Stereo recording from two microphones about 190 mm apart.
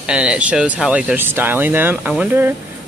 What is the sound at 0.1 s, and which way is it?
Speech, 5° right (ahead or behind).